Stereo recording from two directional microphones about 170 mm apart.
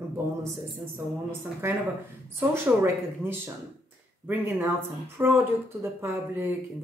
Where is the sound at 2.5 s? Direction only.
10° right (ahead or behind).